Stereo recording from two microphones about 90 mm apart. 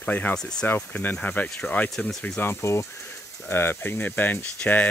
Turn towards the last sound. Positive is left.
turn(degrees=20)  # may be behind; listen again after turning